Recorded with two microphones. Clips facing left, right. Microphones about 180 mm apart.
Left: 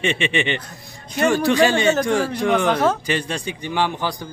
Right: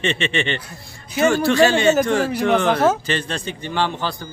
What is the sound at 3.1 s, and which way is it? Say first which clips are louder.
A man's voice: left 1 dB; 10° left (ahead or behind).